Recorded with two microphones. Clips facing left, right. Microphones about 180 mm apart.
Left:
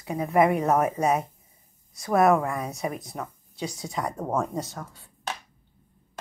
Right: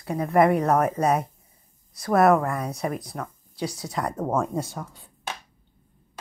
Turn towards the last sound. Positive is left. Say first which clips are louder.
# right 3 dB
turn(degrees=-15)  # may be behind; listen again after turning